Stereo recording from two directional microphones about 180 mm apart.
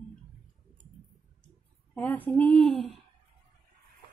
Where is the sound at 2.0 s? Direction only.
10° left (ahead or behind).